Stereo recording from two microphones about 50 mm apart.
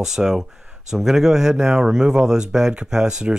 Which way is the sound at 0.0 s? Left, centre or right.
Centre.